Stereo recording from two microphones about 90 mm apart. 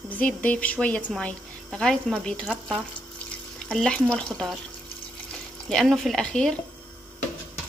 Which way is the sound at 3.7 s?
10° left (ahead or behind).